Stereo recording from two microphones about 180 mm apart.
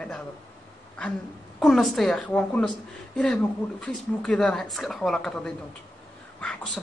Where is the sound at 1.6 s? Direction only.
Centre (ahead or behind).